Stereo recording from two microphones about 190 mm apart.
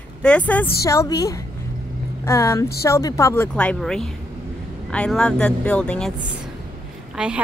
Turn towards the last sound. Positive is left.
turn(degrees=-5)  # may be behind; listen again after turning